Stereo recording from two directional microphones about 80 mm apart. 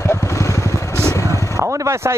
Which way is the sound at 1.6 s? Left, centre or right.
Right.